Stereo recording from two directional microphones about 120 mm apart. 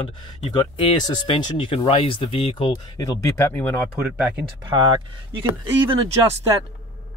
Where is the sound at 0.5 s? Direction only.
40° left (ahead or behind).